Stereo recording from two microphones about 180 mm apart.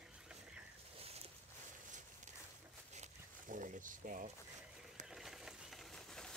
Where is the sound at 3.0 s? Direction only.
45° right (ahead or behind).